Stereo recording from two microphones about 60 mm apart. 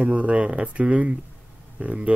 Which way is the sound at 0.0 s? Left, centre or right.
Right.